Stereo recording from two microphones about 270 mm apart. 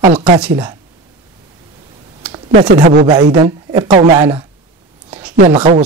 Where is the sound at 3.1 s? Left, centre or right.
Centre.